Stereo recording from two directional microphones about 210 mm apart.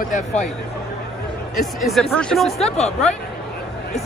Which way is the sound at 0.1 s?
35° left (ahead or behind).